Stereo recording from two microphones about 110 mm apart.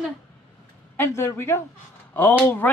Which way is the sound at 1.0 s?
25° left (ahead or behind).